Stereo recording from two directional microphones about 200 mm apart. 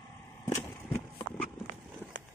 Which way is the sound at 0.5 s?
10° left (ahead or behind).